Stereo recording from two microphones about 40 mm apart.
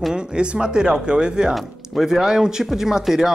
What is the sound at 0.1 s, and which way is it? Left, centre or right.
Speech, right.